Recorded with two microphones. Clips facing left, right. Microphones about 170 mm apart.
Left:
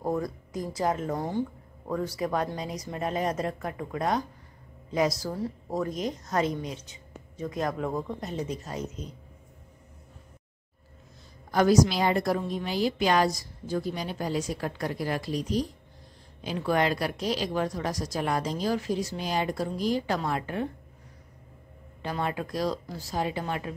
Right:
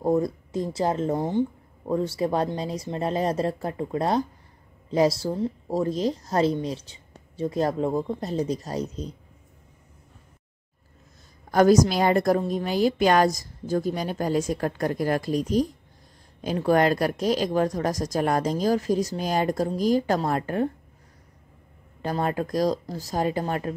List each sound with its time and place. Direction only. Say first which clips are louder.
0.0 s speech: right 7 dB; 25° right (ahead or behind)
11.5 s a woman's voice: right 4 dB; 45° right (ahead or behind)
22.0 s a woman's voice: right 5 dB; 45° right (ahead or behind)